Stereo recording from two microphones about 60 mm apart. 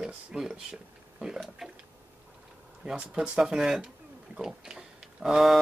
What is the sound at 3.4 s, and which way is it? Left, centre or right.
Speech, centre.